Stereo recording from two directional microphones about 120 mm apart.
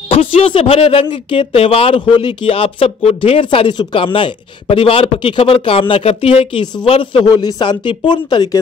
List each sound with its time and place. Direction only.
0.1 s speech: 55° left (ahead or behind); by 8.5 s 40° left (ahead or behind)